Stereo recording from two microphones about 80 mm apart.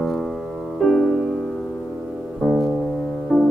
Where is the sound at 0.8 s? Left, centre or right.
Centre.